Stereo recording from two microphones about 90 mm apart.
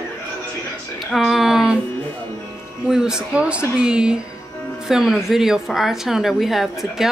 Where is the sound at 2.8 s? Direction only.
5° right (ahead or behind).